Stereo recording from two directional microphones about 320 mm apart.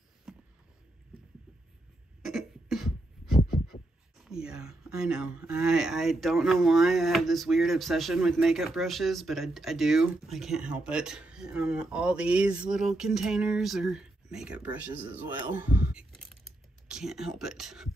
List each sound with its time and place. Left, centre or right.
0.3 s a sound: centre
2.2 s beatboxing: centre
4.2 s speech: centre